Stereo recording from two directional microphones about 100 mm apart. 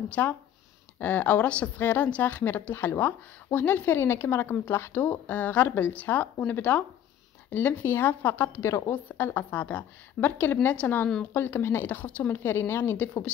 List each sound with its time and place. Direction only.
0.1 s a woman's voice: 15° left (ahead or behind)
12.9 s speech: 15° left (ahead or behind)